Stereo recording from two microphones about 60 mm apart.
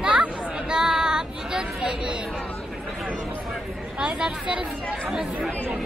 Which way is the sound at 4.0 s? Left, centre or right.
Centre.